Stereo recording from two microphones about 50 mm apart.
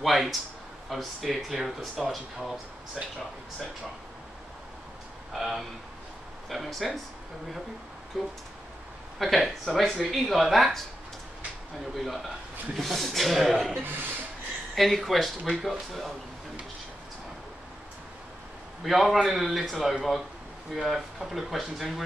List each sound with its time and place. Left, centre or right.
0.0 s speech: centre
5.3 s speech: centre
8.2 s speech: centre
11.9 s speech: centre
13.8 s speech: right
14.8 s speech: centre
18.9 s speech: centre